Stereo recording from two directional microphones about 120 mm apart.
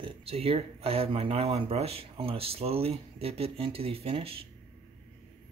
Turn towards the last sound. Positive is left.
turn(degrees=-50)  # may be behind; listen again after turning